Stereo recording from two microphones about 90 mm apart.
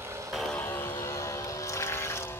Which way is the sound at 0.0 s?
30° right (ahead or behind).